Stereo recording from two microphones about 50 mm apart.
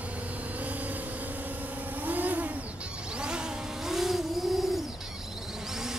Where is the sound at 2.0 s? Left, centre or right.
Right.